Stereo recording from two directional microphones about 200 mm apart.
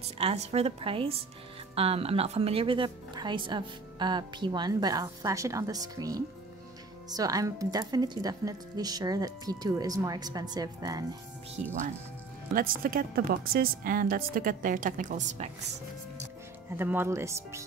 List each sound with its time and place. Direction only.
0.2 s speech: 30° right (ahead or behind)
11.6 s a woman's voice: 35° right (ahead or behind)
16.7 s speech: 10° right (ahead or behind)